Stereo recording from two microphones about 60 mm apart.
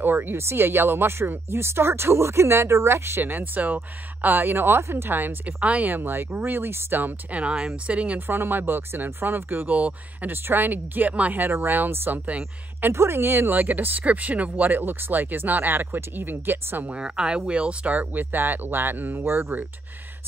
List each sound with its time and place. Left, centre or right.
0.0 s speech: right
8.3 s speech: right
11.4 s speech: right
12.8 s speech: right
16.9 s speech: centre; by 19.6 s right